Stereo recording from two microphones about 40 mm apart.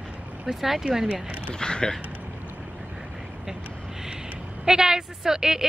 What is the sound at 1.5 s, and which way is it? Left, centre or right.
Speech, centre.